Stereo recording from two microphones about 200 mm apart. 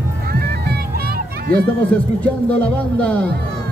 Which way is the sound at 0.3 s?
50° right (ahead or behind).